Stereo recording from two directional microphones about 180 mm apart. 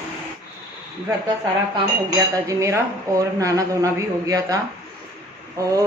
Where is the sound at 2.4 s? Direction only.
15° right (ahead or behind).